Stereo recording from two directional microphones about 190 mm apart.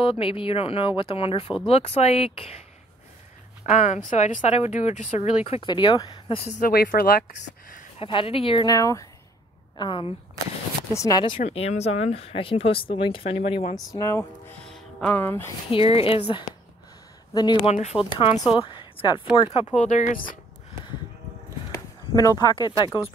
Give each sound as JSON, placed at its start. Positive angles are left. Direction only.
{"t": 0.0, "sound": "speech", "side_deg": 30}
{"t": 3.6, "sound": "speech", "side_deg": 40}
{"t": 6.6, "sound": "speech", "side_deg": 50}
{"t": 8.0, "sound": "speech", "side_deg": 30}
{"t": 11.4, "sound": "speech", "side_deg": 35}
{"t": 13.9, "sound": "speech", "side_deg": 15}
{"t": 14.7, "sound": "music", "side_deg": 5}
{"t": 15.7, "sound": "speech", "side_deg": 30}
{"t": 17.6, "sound": "speech", "side_deg": 35}
{"t": 19.5, "sound": "speech", "side_deg": 35}
{"t": 21.7, "sound": "speech", "side_deg": 20}